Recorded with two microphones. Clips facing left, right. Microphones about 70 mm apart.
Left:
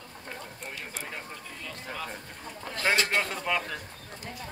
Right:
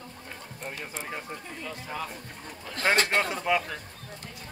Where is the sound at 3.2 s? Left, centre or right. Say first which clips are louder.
Right 3 dB; centre.